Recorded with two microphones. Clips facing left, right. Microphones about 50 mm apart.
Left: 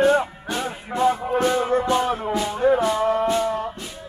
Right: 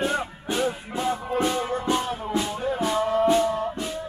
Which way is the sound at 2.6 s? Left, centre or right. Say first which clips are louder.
Left 8 dB; left.